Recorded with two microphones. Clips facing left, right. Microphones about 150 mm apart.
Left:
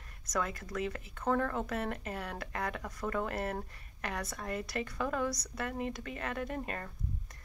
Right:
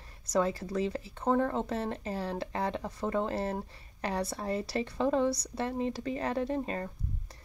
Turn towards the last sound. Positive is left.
turn(degrees=-30)  # may be behind; listen again after turning